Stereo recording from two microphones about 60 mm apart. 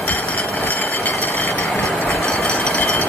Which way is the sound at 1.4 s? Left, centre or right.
Left.